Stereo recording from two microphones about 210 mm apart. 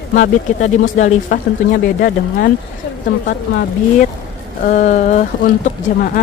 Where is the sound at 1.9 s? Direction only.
45° left (ahead or behind).